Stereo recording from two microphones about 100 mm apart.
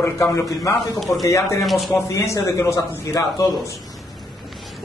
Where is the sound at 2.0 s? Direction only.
30° left (ahead or behind).